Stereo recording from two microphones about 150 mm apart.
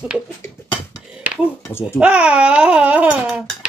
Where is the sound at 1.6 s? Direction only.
15° left (ahead or behind).